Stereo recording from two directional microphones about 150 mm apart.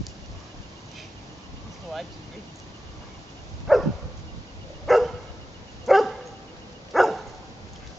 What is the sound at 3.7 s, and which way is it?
Dog, centre (ahead or behind).